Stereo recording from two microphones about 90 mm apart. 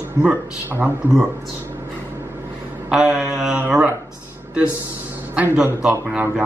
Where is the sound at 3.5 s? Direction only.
20° right (ahead or behind).